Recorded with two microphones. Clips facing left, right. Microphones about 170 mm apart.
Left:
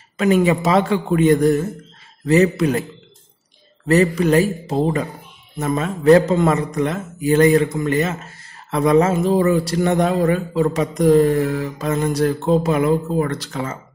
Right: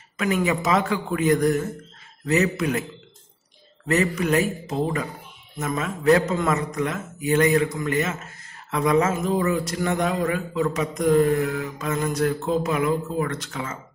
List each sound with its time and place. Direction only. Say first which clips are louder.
0.2 s a man's voice: left 7 dB; 30° left (ahead or behind)
3.8 s speech: left 7 dB; 35° left (ahead or behind)